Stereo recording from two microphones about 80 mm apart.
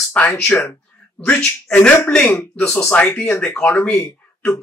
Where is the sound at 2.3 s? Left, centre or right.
Left.